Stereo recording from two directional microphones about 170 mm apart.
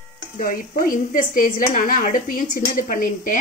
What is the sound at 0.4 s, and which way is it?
A woman's voice, 55° left (ahead or behind).